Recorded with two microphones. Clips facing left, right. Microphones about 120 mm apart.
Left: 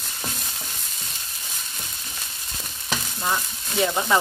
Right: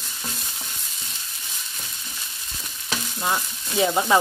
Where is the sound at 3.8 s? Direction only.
15° right (ahead or behind).